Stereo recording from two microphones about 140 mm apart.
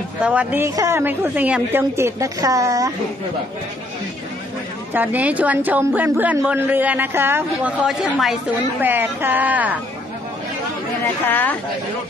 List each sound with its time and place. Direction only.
0.2 s a woman's voice: 10° right (ahead or behind)
4.9 s a woman's voice: 10° right (ahead or behind)
11.2 s a woman's voice: 15° left (ahead or behind)